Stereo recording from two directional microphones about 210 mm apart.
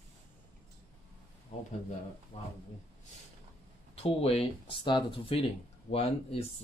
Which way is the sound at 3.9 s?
30° left (ahead or behind).